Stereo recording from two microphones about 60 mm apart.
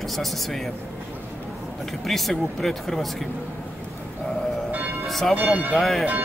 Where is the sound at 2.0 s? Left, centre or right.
Centre.